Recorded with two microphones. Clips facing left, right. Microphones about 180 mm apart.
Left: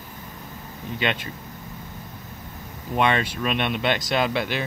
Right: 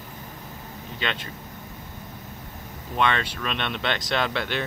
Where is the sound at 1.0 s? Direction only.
15° left (ahead or behind).